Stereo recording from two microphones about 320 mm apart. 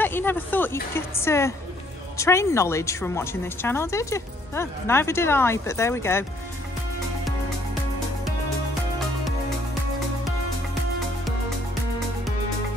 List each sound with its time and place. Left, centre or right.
0.0 s a woman's voice: centre